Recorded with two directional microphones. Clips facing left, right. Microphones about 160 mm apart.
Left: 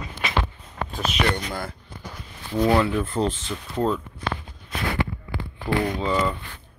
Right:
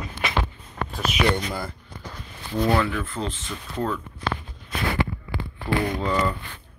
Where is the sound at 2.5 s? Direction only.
10° left (ahead or behind).